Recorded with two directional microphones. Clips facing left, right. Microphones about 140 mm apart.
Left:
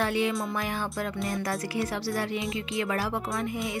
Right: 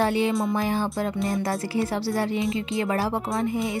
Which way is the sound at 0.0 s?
30° right (ahead or behind).